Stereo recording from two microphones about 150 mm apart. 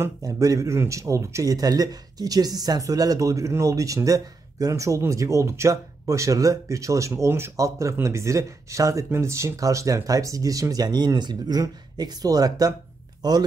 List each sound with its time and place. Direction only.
0.0 s speech: 20° right (ahead or behind)